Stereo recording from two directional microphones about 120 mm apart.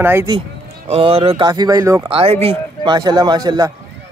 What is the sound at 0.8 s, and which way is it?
Speech, 55° right (ahead or behind).